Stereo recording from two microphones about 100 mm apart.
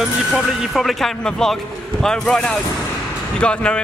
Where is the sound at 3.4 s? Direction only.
10° left (ahead or behind).